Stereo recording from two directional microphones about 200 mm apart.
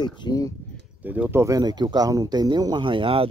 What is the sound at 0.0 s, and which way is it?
Speech, 20° left (ahead or behind).